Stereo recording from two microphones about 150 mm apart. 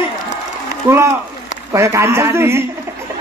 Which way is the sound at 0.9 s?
15° right (ahead or behind).